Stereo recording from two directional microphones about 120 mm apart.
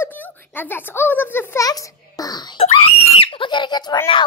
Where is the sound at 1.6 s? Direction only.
30° left (ahead or behind).